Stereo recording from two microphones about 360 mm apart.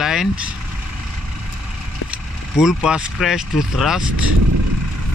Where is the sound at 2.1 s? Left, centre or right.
Centre.